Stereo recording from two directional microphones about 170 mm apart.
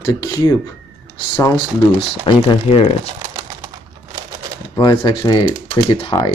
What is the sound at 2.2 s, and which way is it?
Speech, 30° left (ahead or behind).